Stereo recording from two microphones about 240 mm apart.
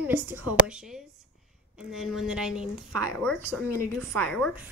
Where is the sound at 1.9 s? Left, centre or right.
Centre.